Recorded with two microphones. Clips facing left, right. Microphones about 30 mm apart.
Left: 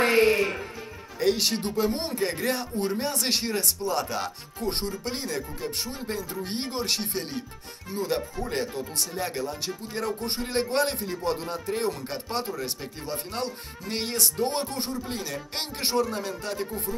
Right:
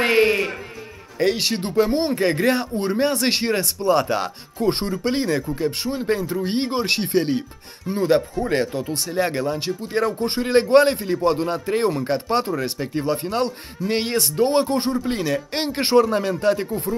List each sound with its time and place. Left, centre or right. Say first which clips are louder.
0.0 s music: right 3 dB; right
1.2 s speech: right 4 dB; right
5.9 s speech: right 10 dB; right